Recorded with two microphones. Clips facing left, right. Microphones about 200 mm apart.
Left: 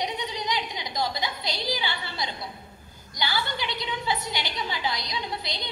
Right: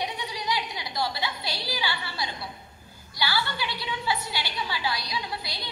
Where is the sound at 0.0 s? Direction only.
20° left (ahead or behind).